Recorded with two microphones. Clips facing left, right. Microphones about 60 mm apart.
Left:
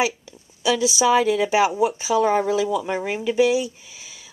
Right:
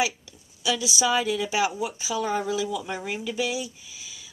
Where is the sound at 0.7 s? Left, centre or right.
Left.